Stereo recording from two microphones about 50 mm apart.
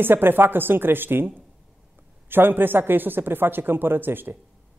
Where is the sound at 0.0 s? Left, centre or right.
Right.